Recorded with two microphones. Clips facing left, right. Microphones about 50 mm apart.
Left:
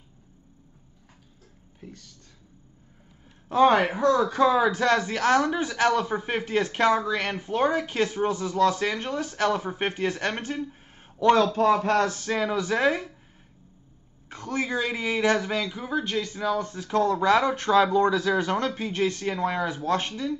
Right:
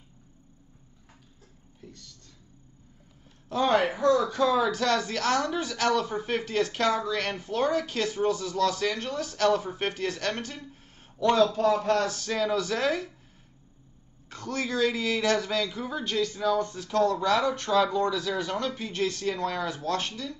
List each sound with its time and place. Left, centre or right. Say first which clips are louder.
1.8 s speech: left 4 dB; left
3.4 s speech: left 5 dB; left
4.0 s speech: left 1 dB; left
4.3 s speech: left 3 dB; left
12.2 s speech: left 1 dB; left
14.3 s speech: left 2 dB; centre